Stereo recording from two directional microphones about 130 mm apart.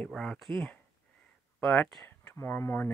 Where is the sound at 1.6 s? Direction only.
5° left (ahead or behind).